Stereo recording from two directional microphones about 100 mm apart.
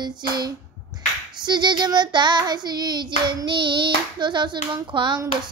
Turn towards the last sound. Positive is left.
turn(degrees=-50)  # may be behind; listen again after turning